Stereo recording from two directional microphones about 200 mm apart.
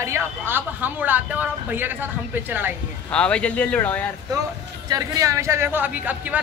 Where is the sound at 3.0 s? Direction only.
5° left (ahead or behind).